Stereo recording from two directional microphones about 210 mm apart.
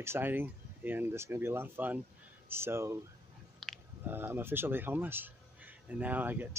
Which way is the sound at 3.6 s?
Centre (ahead or behind).